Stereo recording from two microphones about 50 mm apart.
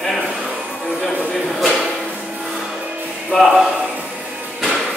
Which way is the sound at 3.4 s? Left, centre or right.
Centre.